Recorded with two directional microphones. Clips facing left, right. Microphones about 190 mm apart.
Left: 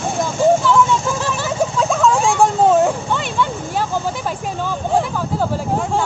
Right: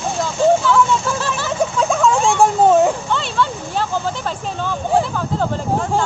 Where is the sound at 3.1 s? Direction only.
15° left (ahead or behind).